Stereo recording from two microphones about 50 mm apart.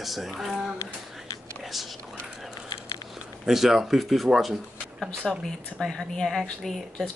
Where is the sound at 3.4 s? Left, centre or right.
Centre.